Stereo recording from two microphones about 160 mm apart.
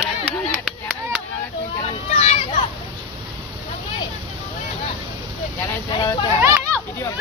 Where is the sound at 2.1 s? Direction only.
45° left (ahead or behind).